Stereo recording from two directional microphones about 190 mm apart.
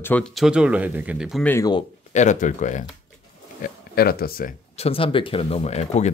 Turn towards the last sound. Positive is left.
turn(degrees=35)  # may be behind; listen again after turning